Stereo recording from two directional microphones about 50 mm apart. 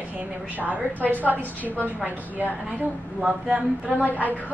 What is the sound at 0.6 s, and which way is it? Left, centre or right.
Speech, right.